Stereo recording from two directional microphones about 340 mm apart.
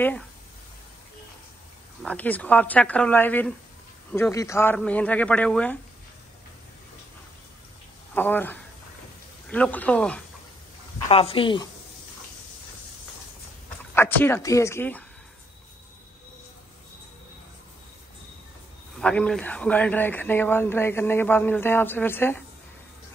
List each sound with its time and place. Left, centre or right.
2.0 s speech: centre
8.1 s speech: centre
11.1 s speech: centre
13.9 s speech: centre
18.9 s speech: centre